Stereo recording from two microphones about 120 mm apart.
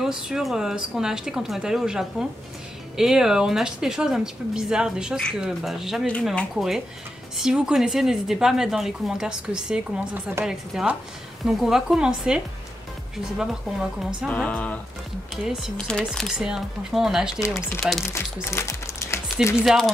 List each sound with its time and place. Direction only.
0.0 s a woman's voice: 5° right (ahead or behind)
13.4 s a woman's voice: 5° right (ahead or behind)
14.3 s music: 10° left (ahead or behind)
15.3 s a woman's voice: 5° right (ahead or behind)
17.4 s speech: 20° left (ahead or behind)
19.6 s a woman's voice: centre (ahead or behind)